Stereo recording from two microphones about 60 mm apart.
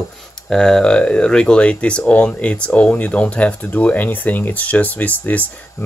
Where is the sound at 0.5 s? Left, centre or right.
Centre.